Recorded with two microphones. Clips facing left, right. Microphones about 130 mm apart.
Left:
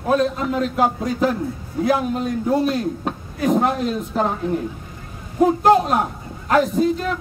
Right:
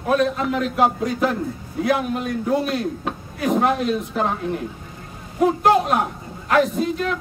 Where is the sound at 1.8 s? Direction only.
35° left (ahead or behind).